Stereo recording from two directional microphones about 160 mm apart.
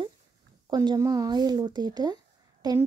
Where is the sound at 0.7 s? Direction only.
25° right (ahead or behind).